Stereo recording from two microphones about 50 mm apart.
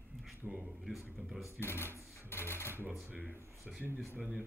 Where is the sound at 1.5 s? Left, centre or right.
Left.